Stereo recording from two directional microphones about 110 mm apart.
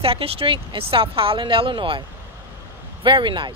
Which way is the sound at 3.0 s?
45° right (ahead or behind).